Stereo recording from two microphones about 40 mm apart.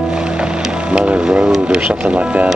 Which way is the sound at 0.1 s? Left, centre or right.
Right.